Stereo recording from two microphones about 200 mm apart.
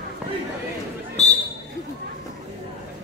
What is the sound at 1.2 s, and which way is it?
Basketball bounce, 35° left (ahead or behind).